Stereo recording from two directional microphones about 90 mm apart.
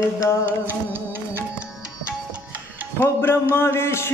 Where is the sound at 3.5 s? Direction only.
30° left (ahead or behind).